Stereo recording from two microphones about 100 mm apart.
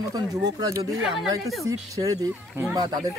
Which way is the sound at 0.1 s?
40° right (ahead or behind).